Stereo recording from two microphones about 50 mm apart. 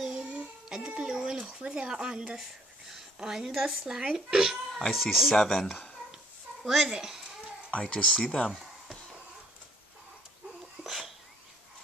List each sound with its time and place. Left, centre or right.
0.2 s child singing: centre
1.1 s a sound: centre
1.7 s speech: centre
3.8 s speech: centre
7.7 s speech: centre
10.8 s sneeze: centre